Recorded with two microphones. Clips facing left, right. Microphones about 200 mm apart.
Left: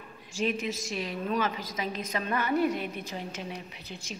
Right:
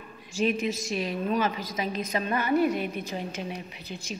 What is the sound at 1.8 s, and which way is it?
Speech, 25° right (ahead or behind).